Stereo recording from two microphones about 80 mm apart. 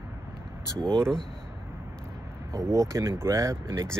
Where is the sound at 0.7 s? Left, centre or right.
Centre.